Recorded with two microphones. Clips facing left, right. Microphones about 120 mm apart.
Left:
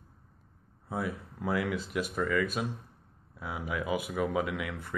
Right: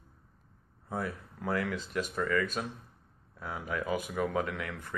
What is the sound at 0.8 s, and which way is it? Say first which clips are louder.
Speech: left 1 dB; 10° left (ahead or behind).